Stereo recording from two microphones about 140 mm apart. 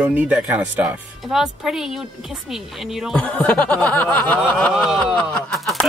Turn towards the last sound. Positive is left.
turn(degrees=5)  # may be behind; listen again after turning